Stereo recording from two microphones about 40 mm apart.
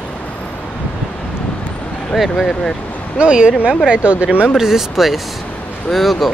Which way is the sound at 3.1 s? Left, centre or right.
Right.